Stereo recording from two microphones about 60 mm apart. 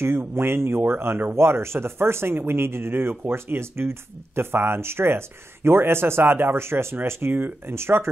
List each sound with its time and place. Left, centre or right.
0.0 s speech: right